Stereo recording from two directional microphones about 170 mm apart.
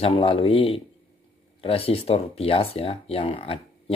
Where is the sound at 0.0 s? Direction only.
30° left (ahead or behind).